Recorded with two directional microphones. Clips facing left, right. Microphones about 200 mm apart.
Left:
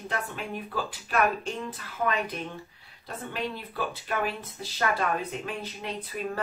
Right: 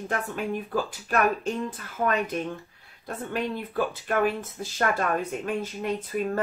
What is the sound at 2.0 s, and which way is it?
Speech, 30° right (ahead or behind).